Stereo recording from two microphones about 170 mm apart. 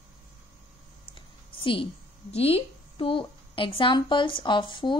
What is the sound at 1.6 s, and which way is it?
A woman's voice, 30° left (ahead or behind).